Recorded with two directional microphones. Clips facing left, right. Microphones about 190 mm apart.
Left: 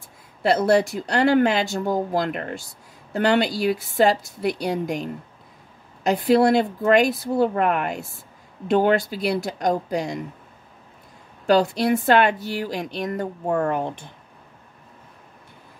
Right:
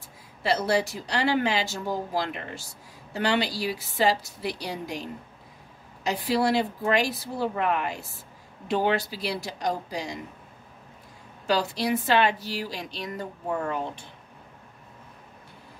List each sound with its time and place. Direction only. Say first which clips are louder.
0.4 s speech: left 6 dB; 55° left (ahead or behind)
6.0 s speech: left 7 dB; 55° left (ahead or behind)
11.4 s speech: left 7 dB; 50° left (ahead or behind)